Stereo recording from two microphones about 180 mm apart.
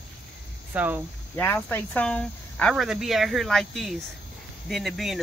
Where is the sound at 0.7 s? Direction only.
10° right (ahead or behind).